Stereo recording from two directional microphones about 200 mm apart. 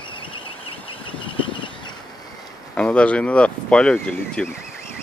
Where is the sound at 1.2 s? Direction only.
25° left (ahead or behind).